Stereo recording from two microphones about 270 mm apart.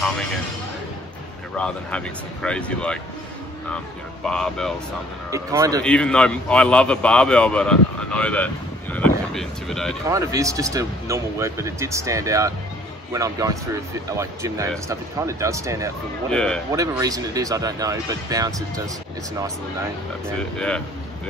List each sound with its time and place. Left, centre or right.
1.6 s a man's voice: centre
4.3 s a man's voice: centre
5.3 s speech: centre
5.9 s a man's voice: centre
10.0 s speech: centre
16.3 s a man's voice: centre
16.7 s speech: centre
20.5 s a man's voice: centre